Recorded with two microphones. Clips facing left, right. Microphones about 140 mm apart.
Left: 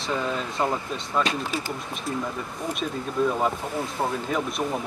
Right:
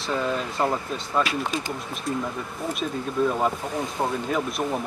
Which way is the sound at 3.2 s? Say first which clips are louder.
Right 1 dB; 5° left (ahead or behind).